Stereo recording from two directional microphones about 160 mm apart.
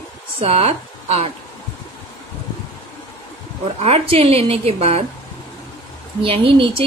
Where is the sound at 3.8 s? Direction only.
40° right (ahead or behind).